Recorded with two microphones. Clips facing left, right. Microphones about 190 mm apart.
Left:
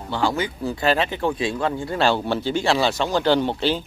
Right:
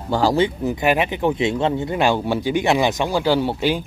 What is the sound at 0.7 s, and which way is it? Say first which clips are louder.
Speech: right 2 dB; 15° right (ahead or behind).